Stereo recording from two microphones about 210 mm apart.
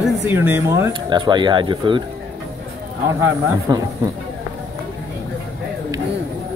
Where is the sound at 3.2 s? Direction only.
15° right (ahead or behind).